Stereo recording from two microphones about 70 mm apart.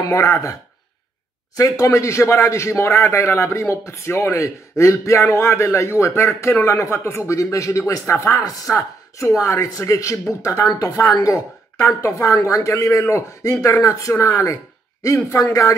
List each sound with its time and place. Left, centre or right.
0.0 s speech: left
1.6 s speech: left
8.7 s a woman's voice: left
9.4 s speech: left